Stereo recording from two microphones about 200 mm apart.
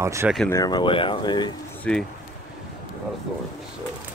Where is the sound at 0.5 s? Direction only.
20° left (ahead or behind).